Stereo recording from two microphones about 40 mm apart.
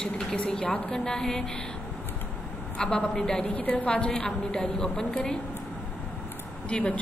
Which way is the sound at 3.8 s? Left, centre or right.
Left.